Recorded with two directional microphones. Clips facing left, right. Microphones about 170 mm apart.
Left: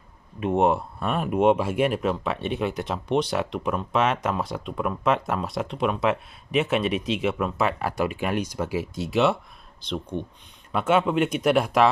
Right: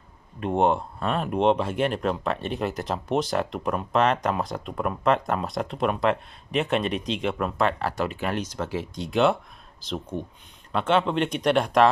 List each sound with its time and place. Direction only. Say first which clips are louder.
0.4 s speech: left 1 dB; 5° left (ahead or behind)
10.7 s speech: left 1 dB; 10° left (ahead or behind)